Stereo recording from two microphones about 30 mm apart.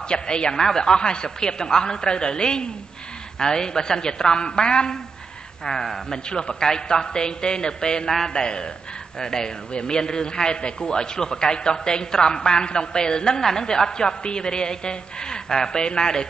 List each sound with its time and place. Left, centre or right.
0.1 s speech: left
0.6 s a man's voice: centre
5.7 s a man's voice: centre
13.4 s a man's voice: centre